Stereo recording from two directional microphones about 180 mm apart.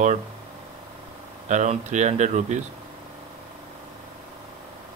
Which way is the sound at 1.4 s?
40° right (ahead or behind).